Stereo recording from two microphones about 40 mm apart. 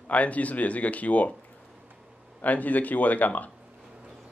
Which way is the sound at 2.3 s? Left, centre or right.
Left.